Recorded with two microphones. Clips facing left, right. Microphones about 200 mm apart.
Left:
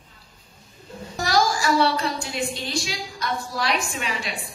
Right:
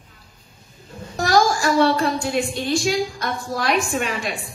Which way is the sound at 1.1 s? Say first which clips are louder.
Right 4 dB; 50° right (ahead or behind).